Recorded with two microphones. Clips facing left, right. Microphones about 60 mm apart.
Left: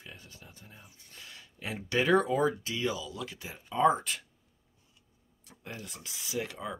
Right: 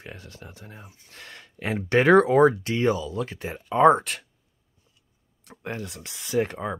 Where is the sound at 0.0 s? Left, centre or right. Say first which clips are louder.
Right 8 dB; right.